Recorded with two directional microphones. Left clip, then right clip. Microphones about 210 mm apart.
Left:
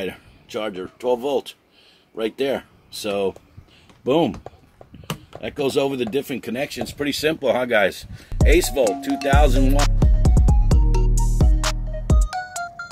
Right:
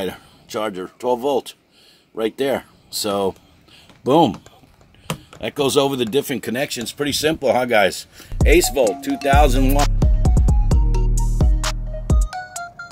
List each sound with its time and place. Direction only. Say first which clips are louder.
0.0 s speech: right 3 dB; 25° right (ahead or behind)
5.4 s speech: right 4 dB; 30° right (ahead or behind)
9.8 s music: right 3 dB; centre (ahead or behind)